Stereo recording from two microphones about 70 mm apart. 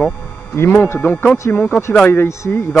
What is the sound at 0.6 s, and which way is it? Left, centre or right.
Speech, left.